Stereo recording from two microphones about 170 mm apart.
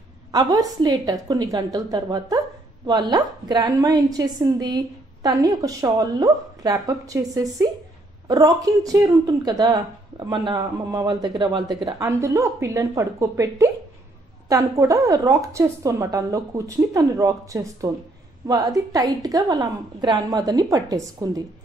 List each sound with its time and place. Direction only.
0.3 s a woman's voice: 25° right (ahead or behind)